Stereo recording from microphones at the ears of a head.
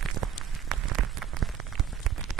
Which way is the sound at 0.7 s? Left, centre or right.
Right.